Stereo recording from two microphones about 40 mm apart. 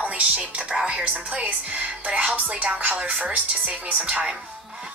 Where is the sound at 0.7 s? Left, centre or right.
Centre.